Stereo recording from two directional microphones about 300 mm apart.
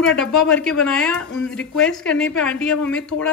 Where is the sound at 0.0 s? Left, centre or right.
Centre.